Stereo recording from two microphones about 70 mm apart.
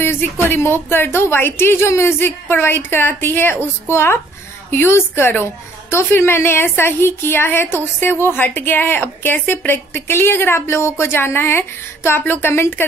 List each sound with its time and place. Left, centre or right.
0.0 s a woman's voice: left